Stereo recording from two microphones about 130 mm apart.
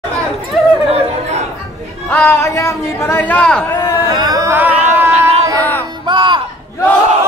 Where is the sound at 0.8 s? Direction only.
50° right (ahead or behind).